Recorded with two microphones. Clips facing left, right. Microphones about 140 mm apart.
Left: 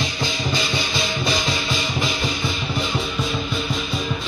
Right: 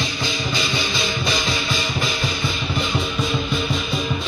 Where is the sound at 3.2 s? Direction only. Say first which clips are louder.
Right 3 dB; centre (ahead or behind).